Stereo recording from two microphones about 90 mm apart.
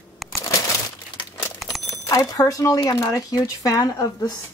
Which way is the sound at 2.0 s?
40° left (ahead or behind).